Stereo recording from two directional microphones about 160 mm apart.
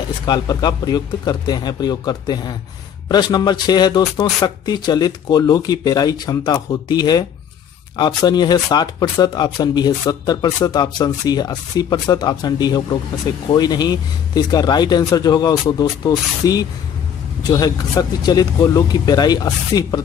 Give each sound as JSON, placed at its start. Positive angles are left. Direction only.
{"t": 0.3, "sound": "speech", "side_deg": 25}